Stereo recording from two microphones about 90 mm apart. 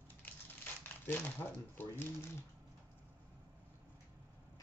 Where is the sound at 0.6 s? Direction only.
20° left (ahead or behind).